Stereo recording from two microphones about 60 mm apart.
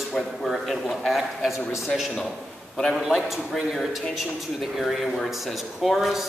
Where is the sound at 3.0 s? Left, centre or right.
Centre.